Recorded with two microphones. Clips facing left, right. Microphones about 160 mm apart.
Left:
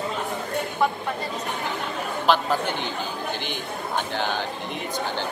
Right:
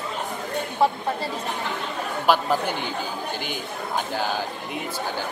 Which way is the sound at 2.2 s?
10° right (ahead or behind).